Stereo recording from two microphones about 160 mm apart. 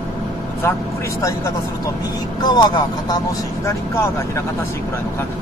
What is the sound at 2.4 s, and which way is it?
Speech, 25° left (ahead or behind).